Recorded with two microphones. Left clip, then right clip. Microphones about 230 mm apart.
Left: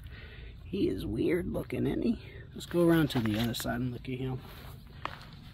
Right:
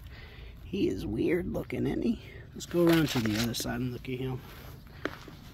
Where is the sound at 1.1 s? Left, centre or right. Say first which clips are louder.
Right 1 dB; centre.